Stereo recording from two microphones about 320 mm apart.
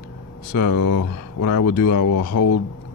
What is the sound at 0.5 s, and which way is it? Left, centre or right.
Speech, left.